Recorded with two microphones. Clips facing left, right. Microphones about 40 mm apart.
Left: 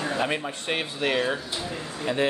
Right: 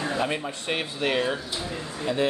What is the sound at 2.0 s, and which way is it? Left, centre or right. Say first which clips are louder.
Speech: even; left.